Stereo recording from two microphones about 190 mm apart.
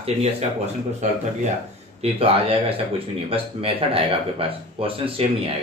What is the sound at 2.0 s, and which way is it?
A man's voice, 30° right (ahead or behind).